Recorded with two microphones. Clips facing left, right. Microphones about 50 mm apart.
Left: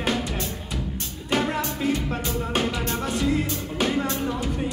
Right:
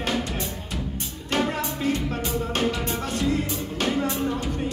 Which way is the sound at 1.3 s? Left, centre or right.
Centre.